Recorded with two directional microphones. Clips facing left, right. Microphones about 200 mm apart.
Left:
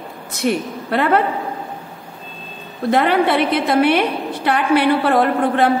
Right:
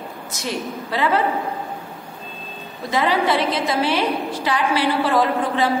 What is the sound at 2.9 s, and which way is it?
A woman's voice, 60° left (ahead or behind).